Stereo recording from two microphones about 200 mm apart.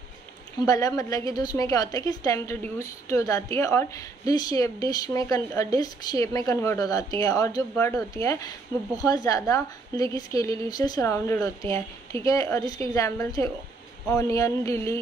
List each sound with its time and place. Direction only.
0.7 s a woman's voice: 15° left (ahead or behind)